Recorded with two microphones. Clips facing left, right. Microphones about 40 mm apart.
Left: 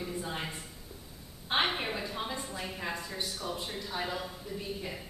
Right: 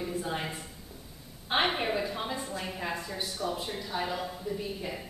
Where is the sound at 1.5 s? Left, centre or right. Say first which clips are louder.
Right 3 dB; centre.